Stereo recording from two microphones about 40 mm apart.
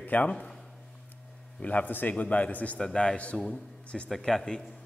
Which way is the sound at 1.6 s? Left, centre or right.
Left.